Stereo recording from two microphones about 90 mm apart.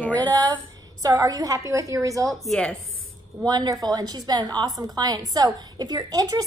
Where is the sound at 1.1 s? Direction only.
40° right (ahead or behind).